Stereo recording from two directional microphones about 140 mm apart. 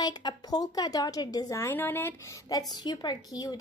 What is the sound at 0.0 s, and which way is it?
Speech, 30° left (ahead or behind).